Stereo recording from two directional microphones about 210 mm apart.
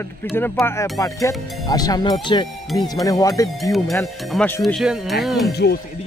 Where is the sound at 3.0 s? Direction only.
15° left (ahead or behind).